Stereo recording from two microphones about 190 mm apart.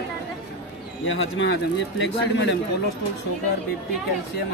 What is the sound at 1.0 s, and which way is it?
Speech, 75° left (ahead or behind).